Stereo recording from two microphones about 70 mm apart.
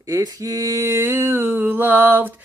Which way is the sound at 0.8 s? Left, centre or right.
Right.